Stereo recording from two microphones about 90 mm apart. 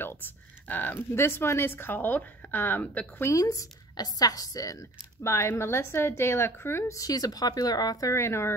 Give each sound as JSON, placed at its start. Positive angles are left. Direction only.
{"t": 0.0, "sound": "speech", "side_deg": 25}
{"t": 3.3, "sound": "a woman's voice", "side_deg": 40}
{"t": 7.0, "sound": "speech", "side_deg": 45}
{"t": 8.1, "sound": "speech", "side_deg": 30}